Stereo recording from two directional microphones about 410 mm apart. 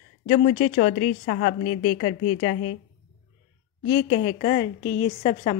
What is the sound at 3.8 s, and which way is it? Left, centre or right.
A woman's voice, centre.